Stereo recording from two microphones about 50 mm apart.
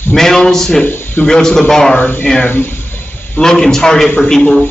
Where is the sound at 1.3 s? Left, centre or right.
Centre.